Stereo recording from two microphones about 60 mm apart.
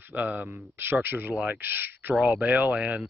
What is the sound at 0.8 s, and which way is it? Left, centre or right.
Speech, right.